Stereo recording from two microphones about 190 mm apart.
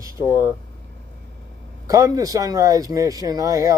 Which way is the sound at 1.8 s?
15° right (ahead or behind).